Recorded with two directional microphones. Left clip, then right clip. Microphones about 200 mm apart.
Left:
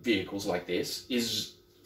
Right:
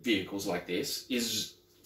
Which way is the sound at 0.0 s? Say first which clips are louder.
Left 1 dB; 10° left (ahead or behind).